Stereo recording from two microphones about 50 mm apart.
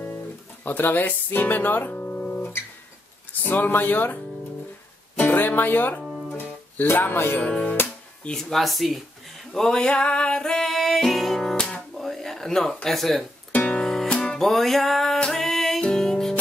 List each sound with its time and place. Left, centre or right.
0.7 s speech: left
6.3 s music: left
7.4 s speech: left
8.4 s music: centre
9.5 s music: centre
12.0 s a sound: centre
12.8 s music: centre
13.5 s music: left
13.7 s music: centre
14.5 s music: centre